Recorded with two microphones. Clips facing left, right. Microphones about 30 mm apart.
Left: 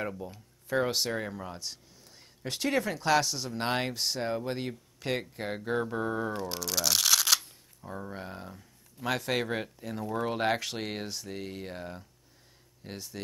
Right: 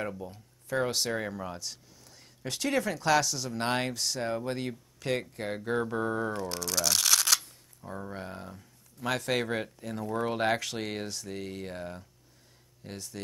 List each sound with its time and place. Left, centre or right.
0.0 s speech: centre
1.6 s speech: centre
3.9 s speech: centre